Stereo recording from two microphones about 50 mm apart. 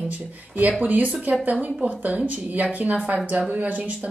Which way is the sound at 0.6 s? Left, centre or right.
Right.